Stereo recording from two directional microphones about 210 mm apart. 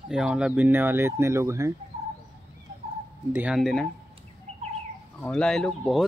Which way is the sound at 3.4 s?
Centre (ahead or behind).